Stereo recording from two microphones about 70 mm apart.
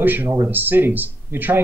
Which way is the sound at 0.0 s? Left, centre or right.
Right.